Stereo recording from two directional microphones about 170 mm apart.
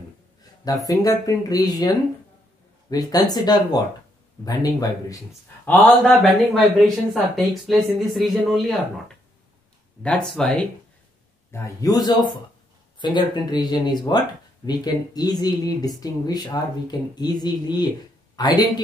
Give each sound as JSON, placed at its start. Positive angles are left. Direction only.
{"t": 0.8, "sound": "speech", "side_deg": 20}
{"t": 5.7, "sound": "speech", "side_deg": 5}
{"t": 10.0, "sound": "speech", "side_deg": 5}
{"t": 11.5, "sound": "speech", "side_deg": 20}